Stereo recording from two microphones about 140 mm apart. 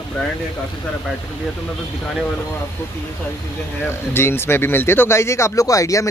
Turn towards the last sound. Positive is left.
turn(degrees=25)  # may be behind; listen again after turning